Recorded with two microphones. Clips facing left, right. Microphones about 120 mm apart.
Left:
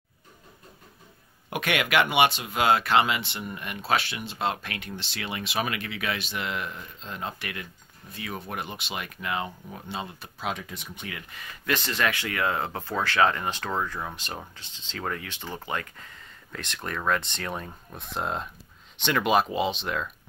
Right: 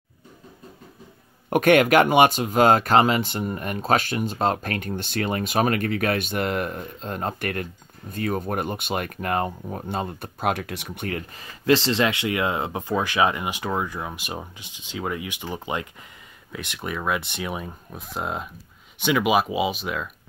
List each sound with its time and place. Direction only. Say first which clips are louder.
1.5 s speech: right 10 dB; 45° right (ahead or behind); by 11.1 s 65° right (ahead or behind)
11.1 s speech: right 10 dB; 40° right (ahead or behind)
11.6 s speech: right 7 dB; 30° right (ahead or behind); by 20.1 s 5° right (ahead or behind)